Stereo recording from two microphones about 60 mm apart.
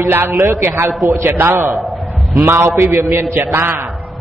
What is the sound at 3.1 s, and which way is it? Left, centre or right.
Speech, right.